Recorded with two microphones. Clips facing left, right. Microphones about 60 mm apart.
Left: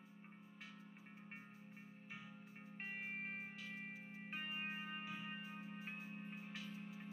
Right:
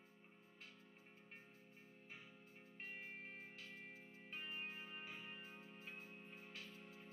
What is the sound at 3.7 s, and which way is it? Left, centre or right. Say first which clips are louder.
Music: left 6 dB; left.